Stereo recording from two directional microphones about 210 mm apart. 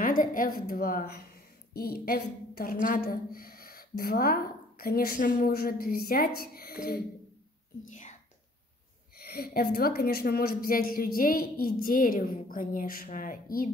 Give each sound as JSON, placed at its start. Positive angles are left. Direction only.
{"t": 0.0, "sound": "a woman's voice", "side_deg": 40}
{"t": 7.9, "sound": "whispering", "side_deg": 35}
{"t": 9.2, "sound": "a woman's voice", "side_deg": 45}